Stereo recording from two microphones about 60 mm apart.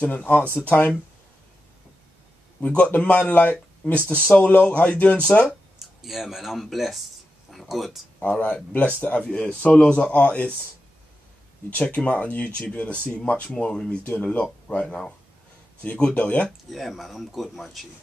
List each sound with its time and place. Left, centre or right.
0.0 s speech: left
2.6 s speech: left
6.0 s speech: centre
8.2 s speech: left
11.7 s speech: left
16.4 s speech: centre